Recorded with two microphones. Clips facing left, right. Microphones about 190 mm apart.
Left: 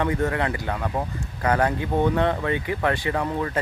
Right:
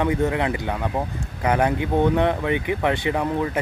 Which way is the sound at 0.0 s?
15° right (ahead or behind).